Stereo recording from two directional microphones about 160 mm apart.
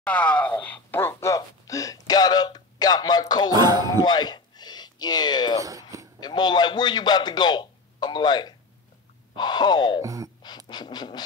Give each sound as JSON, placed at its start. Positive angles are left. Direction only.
{"t": 0.0, "sound": "speech", "side_deg": 5}
{"t": 3.5, "sound": "speech", "side_deg": -25}
{"t": 4.0, "sound": "speech", "side_deg": 25}
{"t": 5.6, "sound": "a sound", "side_deg": -20}
{"t": 6.1, "sound": "a man's voice", "side_deg": 25}
{"t": 10.0, "sound": "speech", "side_deg": -20}
{"t": 10.7, "sound": "speech", "side_deg": 25}